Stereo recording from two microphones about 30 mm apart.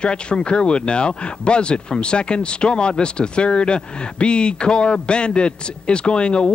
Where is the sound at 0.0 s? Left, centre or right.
Left.